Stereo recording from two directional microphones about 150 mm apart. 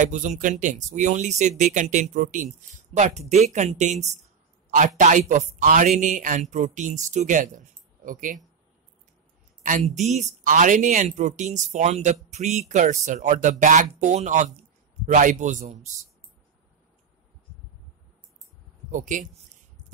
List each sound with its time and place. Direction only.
0.0 s a man's voice: 55° right (ahead or behind)
9.6 s speech: 60° right (ahead or behind)
18.9 s speech: 55° right (ahead or behind)